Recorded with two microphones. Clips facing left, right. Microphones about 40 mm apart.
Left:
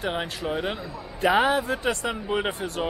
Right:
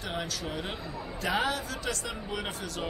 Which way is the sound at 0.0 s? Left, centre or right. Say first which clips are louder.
Left 6 dB; left.